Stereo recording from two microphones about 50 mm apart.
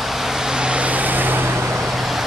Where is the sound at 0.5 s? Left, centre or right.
Centre; by 1.4 s right.